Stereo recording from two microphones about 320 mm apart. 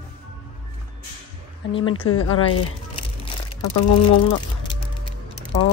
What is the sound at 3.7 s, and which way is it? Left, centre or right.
Speech, left.